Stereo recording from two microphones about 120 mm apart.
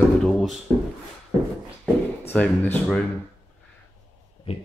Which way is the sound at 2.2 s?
10° left (ahead or behind).